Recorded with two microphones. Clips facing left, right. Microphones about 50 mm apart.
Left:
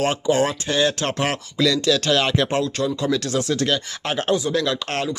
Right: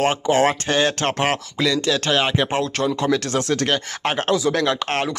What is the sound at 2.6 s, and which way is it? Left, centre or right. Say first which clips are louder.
Speech: right 1 dB; right.